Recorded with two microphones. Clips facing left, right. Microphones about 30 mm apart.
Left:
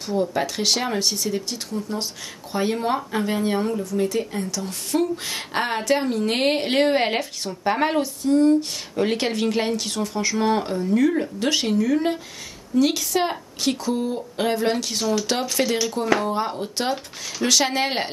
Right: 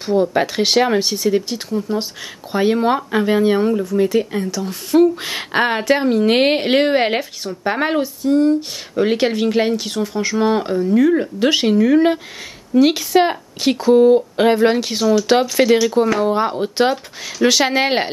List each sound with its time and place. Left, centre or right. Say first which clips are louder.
0.0 s speech: right 7 dB; right
4.6 s speech: right 10 dB; centre
5.1 s speech: right 5 dB; right
17.4 s speech: right 6 dB; centre